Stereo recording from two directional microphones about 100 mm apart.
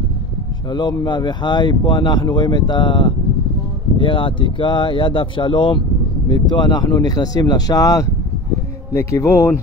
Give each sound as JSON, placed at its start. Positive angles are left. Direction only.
{"t": 0.7, "sound": "speech", "side_deg": 50}